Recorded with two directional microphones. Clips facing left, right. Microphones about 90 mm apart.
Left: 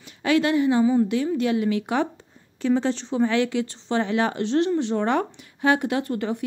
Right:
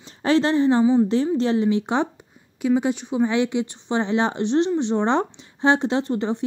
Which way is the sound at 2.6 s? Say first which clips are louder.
Right 1 dB; 10° right (ahead or behind).